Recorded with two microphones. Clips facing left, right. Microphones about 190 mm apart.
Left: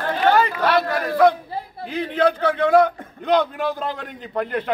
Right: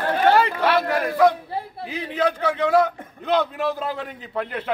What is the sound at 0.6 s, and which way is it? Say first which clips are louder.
A man's voice: even; 10° right (ahead or behind).